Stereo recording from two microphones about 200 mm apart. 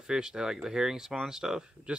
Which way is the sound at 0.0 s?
5° right (ahead or behind).